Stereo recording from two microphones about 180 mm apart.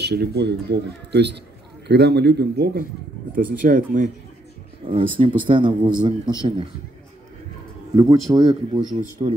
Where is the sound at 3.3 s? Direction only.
50° right (ahead or behind).